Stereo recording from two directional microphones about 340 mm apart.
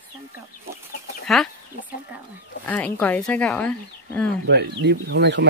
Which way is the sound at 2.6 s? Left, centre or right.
Centre.